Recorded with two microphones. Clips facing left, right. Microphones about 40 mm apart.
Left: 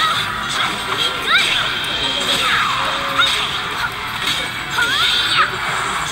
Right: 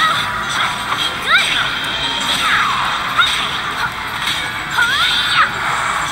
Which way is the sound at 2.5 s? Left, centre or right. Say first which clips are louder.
Right 4 dB; centre.